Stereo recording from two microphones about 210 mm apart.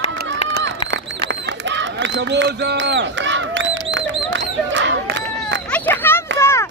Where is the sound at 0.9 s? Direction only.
55° right (ahead or behind).